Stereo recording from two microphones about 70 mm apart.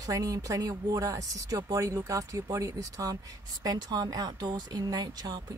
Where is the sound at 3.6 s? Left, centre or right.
Right.